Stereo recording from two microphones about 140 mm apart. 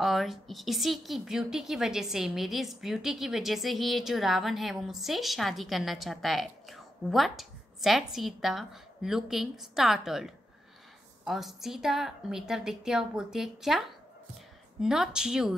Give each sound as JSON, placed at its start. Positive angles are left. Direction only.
{"t": 0.0, "sound": "a woman's voice", "side_deg": 0}